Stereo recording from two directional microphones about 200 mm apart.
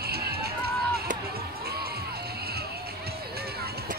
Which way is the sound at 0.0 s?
50° right (ahead or behind).